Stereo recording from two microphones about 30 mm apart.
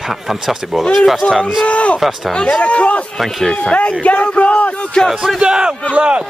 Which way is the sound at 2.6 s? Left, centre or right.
Left.